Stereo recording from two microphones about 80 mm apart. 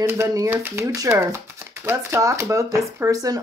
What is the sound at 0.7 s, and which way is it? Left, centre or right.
Speech, right.